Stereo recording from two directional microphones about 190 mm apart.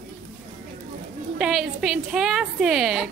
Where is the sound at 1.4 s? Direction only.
Centre (ahead or behind).